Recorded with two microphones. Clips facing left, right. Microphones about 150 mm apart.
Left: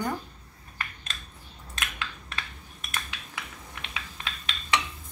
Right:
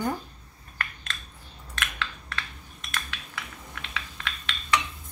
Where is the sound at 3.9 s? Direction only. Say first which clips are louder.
Right 2 dB; 20° left (ahead or behind).